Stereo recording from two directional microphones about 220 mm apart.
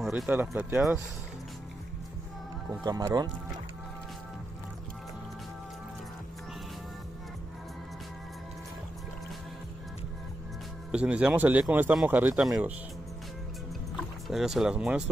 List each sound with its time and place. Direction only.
0.0 s speech: 5° right (ahead or behind)
2.8 s speech: 20° right (ahead or behind)
10.9 s speech: 5° right (ahead or behind)
14.2 s speech: centre (ahead or behind)